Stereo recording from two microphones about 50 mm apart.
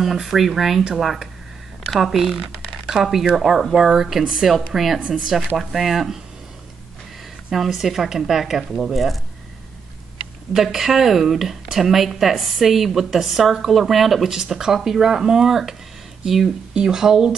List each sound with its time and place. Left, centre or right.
0.0 s speech: centre
4.5 s speech: centre
7.5 s speech: centre
10.5 s speech: centre